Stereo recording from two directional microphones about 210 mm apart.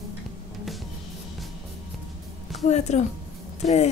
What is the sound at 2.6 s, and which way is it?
A woman's voice, 35° left (ahead or behind).